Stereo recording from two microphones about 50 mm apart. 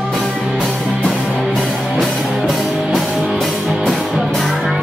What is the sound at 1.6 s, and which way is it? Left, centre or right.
Music, centre.